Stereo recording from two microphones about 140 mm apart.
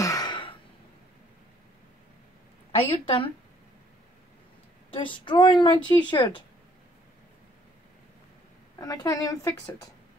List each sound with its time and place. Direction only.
0.0 s a sound: 25° left (ahead or behind)
2.7 s speech: 40° left (ahead or behind)
4.9 s speech: 35° left (ahead or behind)
8.7 s a woman's voice: 25° left (ahead or behind)